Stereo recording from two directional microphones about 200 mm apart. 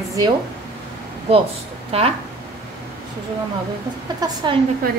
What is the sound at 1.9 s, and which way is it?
Speech, 30° right (ahead or behind).